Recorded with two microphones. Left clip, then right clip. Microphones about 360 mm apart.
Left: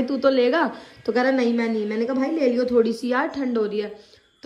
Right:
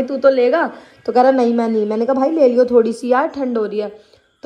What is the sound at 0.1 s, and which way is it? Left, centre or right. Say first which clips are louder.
A woman's voice: right 6 dB; centre.